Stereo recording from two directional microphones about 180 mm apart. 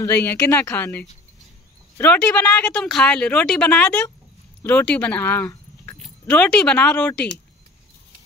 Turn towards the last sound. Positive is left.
turn(degrees=5)  # may be behind; listen again after turning